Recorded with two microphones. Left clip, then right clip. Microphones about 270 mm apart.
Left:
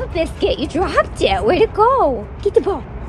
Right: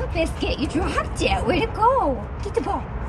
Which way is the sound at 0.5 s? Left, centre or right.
Centre.